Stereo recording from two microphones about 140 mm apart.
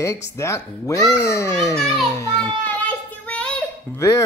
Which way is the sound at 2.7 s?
10° left (ahead or behind).